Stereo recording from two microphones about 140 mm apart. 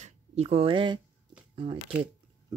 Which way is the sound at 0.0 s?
45° right (ahead or behind).